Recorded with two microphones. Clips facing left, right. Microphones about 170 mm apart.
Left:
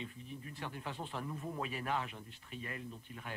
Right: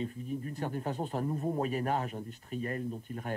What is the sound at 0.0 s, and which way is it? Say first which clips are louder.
Speech: right 10 dB; 45° right (ahead or behind).